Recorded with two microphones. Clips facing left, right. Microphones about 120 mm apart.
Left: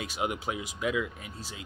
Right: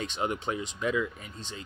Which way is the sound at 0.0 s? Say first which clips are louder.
Right 1 dB; 10° left (ahead or behind).